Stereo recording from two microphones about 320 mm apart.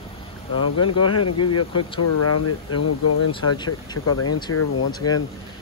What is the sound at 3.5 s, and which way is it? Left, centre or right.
Speech, centre.